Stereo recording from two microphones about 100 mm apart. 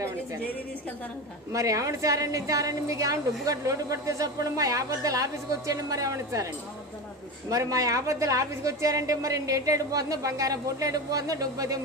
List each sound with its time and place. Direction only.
1.5 s a woman's voice: 35° right (ahead or behind)